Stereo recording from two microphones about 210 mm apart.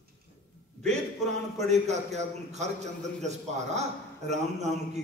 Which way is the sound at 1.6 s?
35° right (ahead or behind).